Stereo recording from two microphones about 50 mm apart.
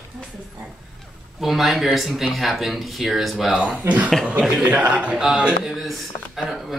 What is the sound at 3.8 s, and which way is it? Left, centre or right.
Speech, right.